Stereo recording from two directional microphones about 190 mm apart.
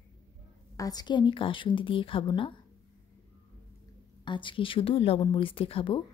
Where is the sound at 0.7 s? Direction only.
20° left (ahead or behind).